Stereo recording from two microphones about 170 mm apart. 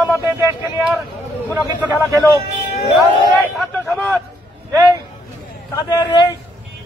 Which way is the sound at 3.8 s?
Centre (ahead or behind).